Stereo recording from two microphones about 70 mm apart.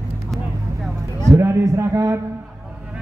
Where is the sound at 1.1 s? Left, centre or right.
Right.